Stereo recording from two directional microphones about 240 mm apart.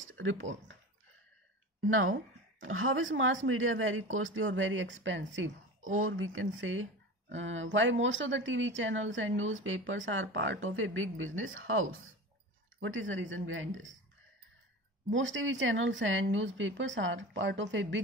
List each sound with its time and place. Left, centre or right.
0.0 s speech: right
1.9 s speech: right
15.0 s speech: right